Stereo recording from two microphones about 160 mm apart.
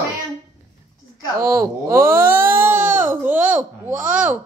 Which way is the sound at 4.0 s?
10° right (ahead or behind).